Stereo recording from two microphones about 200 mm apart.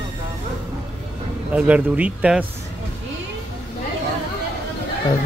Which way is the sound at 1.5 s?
5° right (ahead or behind).